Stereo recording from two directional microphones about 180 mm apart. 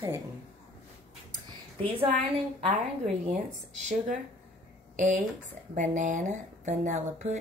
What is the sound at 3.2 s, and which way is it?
Speech, 40° right (ahead or behind).